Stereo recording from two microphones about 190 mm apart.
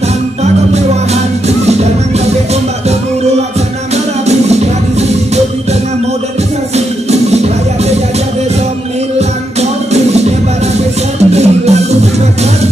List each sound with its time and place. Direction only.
3.9 s music: 35° right (ahead or behind)
7.1 s music: 35° right (ahead or behind)
11.3 s music: 35° right (ahead or behind)